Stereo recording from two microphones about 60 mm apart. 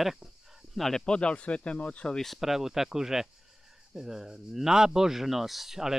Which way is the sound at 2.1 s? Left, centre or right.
Centre.